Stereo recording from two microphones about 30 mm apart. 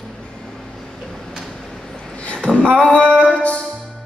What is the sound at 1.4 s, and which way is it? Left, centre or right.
Vehicle, centre.